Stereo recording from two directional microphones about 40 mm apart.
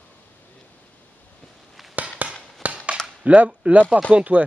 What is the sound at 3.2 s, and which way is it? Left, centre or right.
Speech, right.